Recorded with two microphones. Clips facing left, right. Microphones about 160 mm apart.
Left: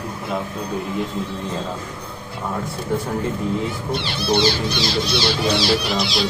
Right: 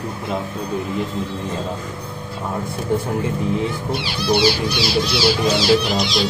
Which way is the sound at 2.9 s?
15° right (ahead or behind).